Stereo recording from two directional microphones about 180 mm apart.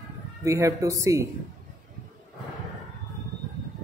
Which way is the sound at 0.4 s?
15° right (ahead or behind).